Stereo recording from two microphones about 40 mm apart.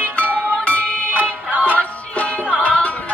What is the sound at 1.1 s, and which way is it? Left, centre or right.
Music, right.